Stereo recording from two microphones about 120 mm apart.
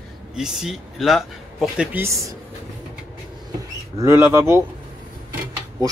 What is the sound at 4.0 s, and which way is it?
Speech, 25° right (ahead or behind).